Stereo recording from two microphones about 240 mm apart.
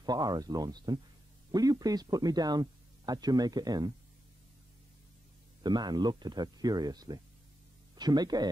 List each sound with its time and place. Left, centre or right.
0.0 s speech: centre
5.6 s speech: centre